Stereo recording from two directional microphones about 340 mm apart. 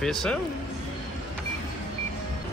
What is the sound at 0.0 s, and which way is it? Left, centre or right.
Speech, centre.